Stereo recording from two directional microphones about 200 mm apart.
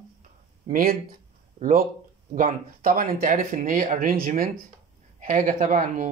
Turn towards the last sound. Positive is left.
turn(degrees=-40)  # may be behind; listen again after turning